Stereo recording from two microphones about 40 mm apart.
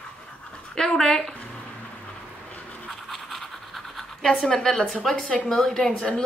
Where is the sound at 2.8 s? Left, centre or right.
Centre.